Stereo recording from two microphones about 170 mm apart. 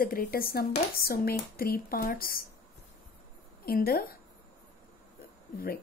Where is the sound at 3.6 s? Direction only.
60° left (ahead or behind).